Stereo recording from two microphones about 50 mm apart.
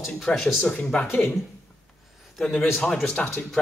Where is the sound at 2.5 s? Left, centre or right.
Left; by 3.7 s centre.